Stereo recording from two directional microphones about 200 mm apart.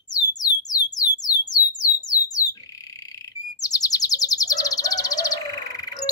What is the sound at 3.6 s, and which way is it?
Bird, 20° left (ahead or behind).